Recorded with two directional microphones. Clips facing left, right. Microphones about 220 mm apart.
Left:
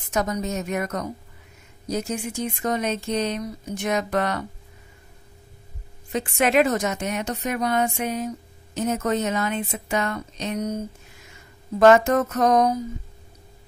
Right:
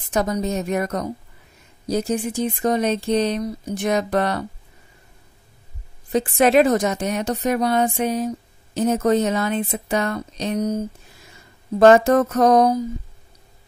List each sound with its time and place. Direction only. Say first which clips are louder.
0.1 s speech: right 3 dB; 30° right (ahead or behind)
6.1 s speech: right 4 dB; 35° right (ahead or behind)
11.8 s speech: right 3 dB; 35° right (ahead or behind)